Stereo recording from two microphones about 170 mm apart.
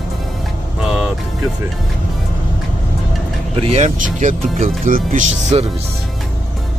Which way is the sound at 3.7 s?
45° right (ahead or behind).